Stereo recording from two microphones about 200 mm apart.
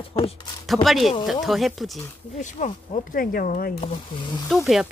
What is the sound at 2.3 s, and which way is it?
Speech, 35° left (ahead or behind).